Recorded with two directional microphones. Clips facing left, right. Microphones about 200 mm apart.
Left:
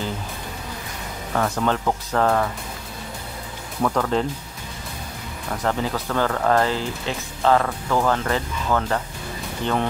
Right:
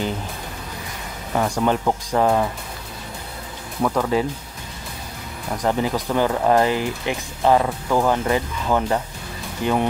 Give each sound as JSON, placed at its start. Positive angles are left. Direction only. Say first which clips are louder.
{"t": 1.3, "sound": "speech", "louder": "right 2 dB", "side_deg": -15}
{"t": 3.8, "sound": "speech", "louder": "right 1 dB", "side_deg": -10}
{"t": 5.6, "sound": "speech", "louder": "right 3 dB", "side_deg": -15}